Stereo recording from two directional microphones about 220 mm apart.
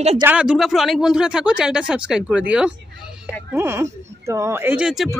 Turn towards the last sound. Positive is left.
turn(degrees=-5)  # may be behind; listen again after turning